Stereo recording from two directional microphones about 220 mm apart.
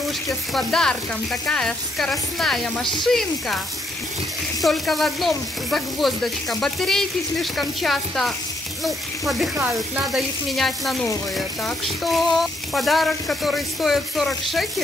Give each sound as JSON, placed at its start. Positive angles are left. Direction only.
{"t": 0.5, "sound": "speech", "side_deg": 0}